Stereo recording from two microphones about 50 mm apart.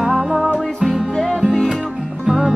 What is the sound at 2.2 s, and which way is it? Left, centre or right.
Music, centre.